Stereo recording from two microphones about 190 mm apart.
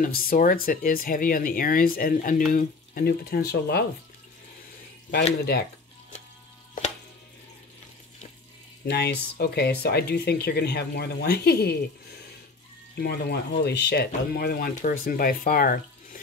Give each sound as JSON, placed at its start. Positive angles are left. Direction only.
{"t": 0.0, "sound": "speech", "side_deg": 50}
{"t": 8.8, "sound": "speech", "side_deg": 60}
{"t": 13.0, "sound": "speech", "side_deg": 55}